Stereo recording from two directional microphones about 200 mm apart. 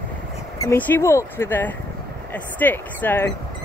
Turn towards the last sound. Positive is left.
turn(degrees=10)  # may be behind; listen again after turning